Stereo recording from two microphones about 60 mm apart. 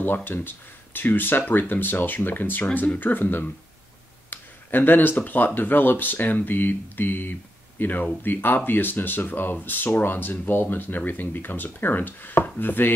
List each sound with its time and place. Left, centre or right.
0.0 s speech: left